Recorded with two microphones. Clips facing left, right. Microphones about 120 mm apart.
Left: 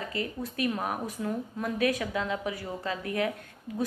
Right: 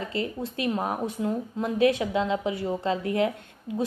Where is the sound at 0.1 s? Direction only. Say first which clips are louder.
Right 4 dB; 25° right (ahead or behind).